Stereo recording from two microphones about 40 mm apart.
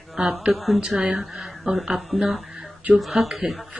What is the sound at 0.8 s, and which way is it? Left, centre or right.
Speech, centre.